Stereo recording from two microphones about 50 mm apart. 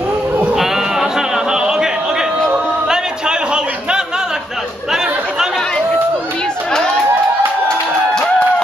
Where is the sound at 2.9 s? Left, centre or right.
Centre.